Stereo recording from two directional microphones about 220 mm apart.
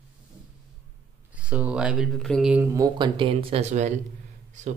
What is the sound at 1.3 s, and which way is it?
Speech, 5° right (ahead or behind).